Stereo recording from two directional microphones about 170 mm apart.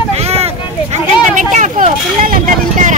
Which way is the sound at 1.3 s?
50° right (ahead or behind).